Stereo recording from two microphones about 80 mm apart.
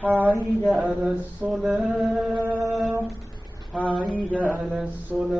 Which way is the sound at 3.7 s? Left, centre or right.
Centre.